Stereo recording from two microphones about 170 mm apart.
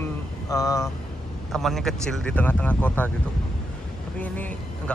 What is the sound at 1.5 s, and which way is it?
Speech, centre (ahead or behind).